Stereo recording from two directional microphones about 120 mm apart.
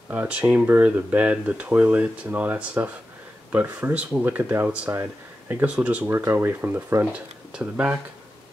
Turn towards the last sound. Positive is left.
turn(degrees=-10)  # may be behind; listen again after turning